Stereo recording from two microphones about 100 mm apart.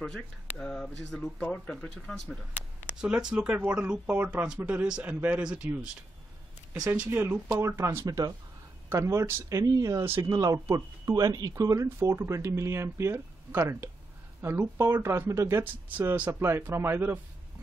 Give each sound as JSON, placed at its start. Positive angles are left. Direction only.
{"t": 0.0, "sound": "speech", "side_deg": 5}
{"t": 2.9, "sound": "speech", "side_deg": -10}
{"t": 7.1, "sound": "speech", "side_deg": -25}